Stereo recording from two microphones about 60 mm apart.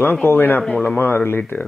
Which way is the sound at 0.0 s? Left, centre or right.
Left.